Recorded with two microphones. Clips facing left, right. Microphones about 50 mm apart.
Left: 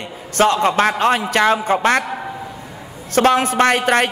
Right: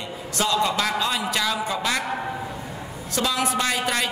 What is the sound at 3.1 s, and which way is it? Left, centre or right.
Speech, left.